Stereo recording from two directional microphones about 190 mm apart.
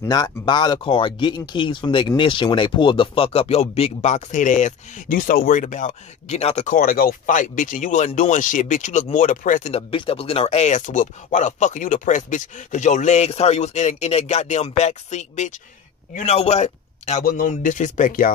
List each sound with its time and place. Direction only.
0.0 s speech: 20° left (ahead or behind); by 18.3 s 45° left (ahead or behind)